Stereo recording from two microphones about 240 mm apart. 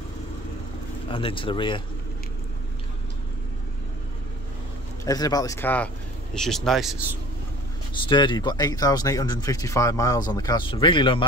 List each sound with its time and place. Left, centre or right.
1.1 s speech: left
5.0 s speech: centre
8.1 s speech: centre